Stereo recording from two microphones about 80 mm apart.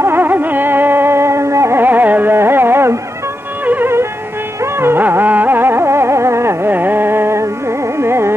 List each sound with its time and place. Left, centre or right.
0.0 s music: right
8.0 s carnatic music: right